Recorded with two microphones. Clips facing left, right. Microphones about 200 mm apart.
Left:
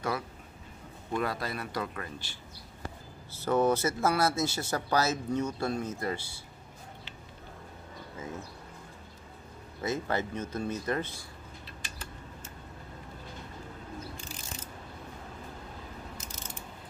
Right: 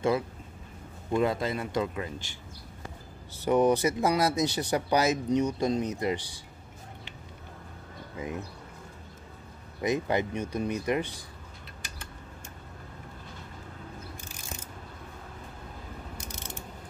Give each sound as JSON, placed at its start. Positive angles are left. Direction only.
{"t": 1.1, "sound": "speech", "side_deg": -20}
{"t": 3.3, "sound": "speech", "side_deg": -15}
{"t": 8.2, "sound": "speech", "side_deg": -15}
{"t": 9.8, "sound": "speech", "side_deg": -15}